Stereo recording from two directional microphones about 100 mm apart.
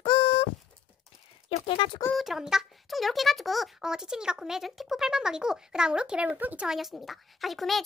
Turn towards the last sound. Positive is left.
turn(degrees=0)  # may be behind; listen again after turning